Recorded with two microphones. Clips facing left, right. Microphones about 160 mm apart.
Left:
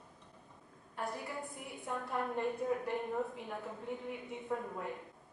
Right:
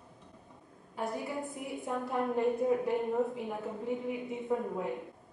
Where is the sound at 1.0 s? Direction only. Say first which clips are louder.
Right 5 dB; centre (ahead or behind).